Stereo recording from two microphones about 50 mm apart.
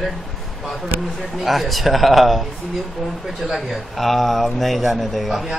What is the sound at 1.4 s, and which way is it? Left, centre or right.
Speech, centre.